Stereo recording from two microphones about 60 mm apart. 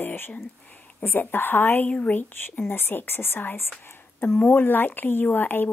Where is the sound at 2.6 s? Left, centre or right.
Left.